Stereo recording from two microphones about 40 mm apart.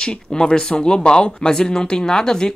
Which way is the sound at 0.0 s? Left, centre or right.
Centre.